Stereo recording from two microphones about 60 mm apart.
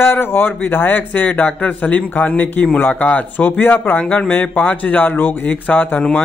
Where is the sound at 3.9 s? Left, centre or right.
Left.